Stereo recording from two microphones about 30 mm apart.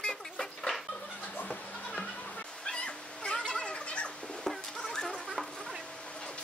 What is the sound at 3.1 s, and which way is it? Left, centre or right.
Fowl, left.